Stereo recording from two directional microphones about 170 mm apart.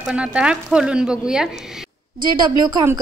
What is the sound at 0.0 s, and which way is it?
A woman's voice, 5° right (ahead or behind).